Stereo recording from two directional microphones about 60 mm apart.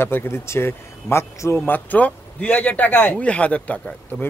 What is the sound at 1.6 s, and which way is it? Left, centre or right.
A man's voice, left.